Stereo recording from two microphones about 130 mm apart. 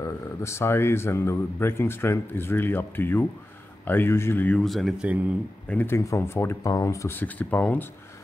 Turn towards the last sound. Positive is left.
turn(degrees=15)  # may be behind; listen again after turning